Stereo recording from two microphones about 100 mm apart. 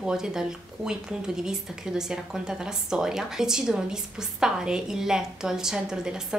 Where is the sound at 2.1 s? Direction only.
5° right (ahead or behind).